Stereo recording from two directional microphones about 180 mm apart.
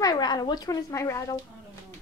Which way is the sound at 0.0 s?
20° left (ahead or behind).